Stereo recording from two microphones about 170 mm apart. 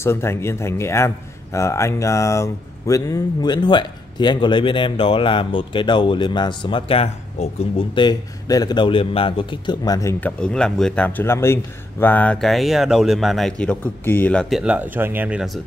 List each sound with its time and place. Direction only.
0.0 s speech: 15° left (ahead or behind)
10.4 s a man's voice: 5° left (ahead or behind)